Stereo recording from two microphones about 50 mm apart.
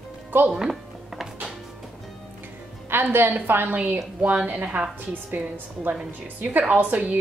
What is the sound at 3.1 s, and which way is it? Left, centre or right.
Speech, right.